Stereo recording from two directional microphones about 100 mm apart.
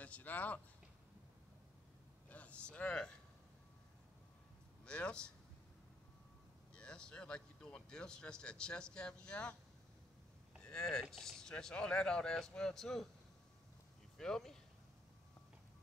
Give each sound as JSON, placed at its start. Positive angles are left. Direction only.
{"t": 0.0, "sound": "speech", "side_deg": 15}
{"t": 2.2, "sound": "a sound", "side_deg": 15}
{"t": 4.8, "sound": "speech", "side_deg": 10}
{"t": 6.7, "sound": "speech", "side_deg": 10}
{"t": 10.6, "sound": "speech", "side_deg": 5}
{"t": 14.1, "sound": "speech", "side_deg": 5}